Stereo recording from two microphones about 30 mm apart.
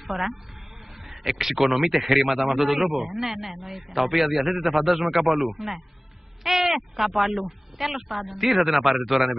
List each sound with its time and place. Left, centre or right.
0.1 s a man's voice: centre